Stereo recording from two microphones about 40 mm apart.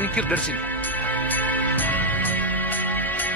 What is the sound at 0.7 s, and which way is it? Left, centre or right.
Music, left.